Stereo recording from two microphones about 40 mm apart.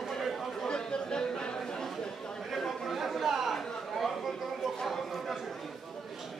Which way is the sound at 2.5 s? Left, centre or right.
Centre.